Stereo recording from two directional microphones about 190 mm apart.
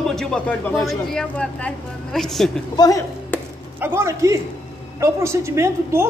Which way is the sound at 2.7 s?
20° left (ahead or behind).